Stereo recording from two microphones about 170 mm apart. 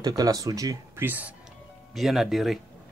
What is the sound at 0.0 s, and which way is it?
Speech, 20° right (ahead or behind).